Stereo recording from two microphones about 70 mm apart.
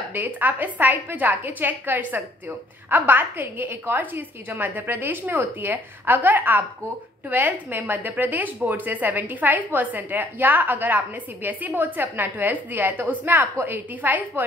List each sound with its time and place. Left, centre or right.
0.1 s a woman's voice: right